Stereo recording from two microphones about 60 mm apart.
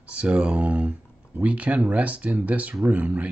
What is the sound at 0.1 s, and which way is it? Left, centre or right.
Speech, right.